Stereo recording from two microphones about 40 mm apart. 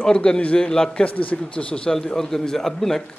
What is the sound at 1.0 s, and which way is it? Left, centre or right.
Speech, left.